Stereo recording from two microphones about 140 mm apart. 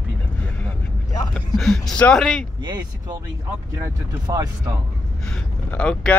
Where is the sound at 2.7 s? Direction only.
30° right (ahead or behind).